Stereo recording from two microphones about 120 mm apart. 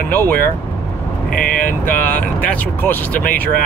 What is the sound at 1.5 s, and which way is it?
Speech, 15° left (ahead or behind).